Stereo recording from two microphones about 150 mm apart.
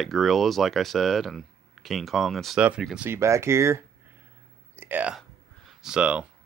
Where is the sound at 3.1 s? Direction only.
20° right (ahead or behind).